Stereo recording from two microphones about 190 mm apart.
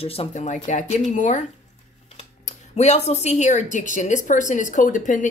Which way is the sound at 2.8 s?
35° left (ahead or behind).